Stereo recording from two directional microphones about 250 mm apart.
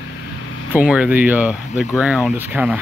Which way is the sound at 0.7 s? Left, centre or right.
Centre.